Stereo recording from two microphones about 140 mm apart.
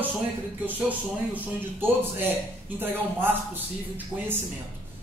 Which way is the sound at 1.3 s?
15° right (ahead or behind).